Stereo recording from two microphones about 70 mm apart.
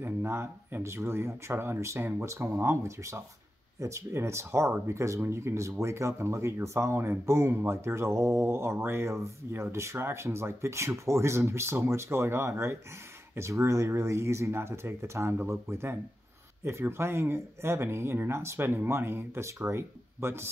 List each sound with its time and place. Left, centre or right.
0.0 s speech: right